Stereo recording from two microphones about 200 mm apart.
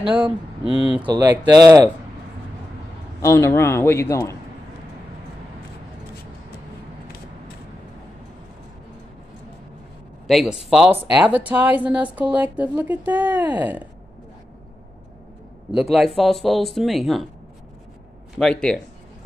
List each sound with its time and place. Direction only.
0.7 s speech: 20° right (ahead or behind)
3.2 s a man's voice: 15° left (ahead or behind)
10.2 s speech: centre (ahead or behind)
15.7 s speech: centre (ahead or behind)
18.4 s speech: 5° left (ahead or behind)